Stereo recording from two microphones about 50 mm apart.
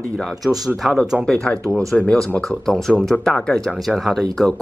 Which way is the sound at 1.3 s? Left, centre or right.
Centre.